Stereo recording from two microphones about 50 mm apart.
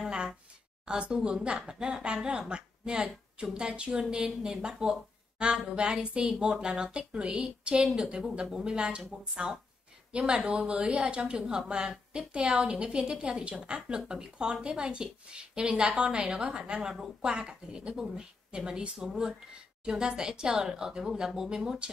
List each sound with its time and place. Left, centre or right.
0.8 s a woman's voice: right